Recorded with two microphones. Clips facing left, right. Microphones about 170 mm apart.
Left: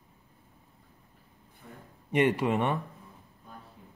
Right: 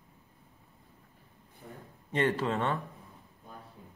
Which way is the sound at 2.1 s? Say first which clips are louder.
Left 4 dB; 15° left (ahead or behind).